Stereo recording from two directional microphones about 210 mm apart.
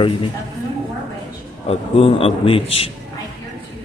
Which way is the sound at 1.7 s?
30° left (ahead or behind).